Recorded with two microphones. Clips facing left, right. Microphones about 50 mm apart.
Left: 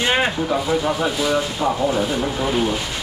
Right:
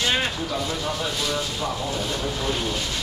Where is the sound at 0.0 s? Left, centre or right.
Left.